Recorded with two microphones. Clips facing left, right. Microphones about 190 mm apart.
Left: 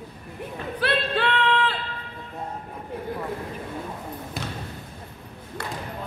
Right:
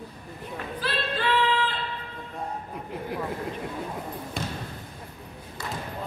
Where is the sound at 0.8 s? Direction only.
65° left (ahead or behind).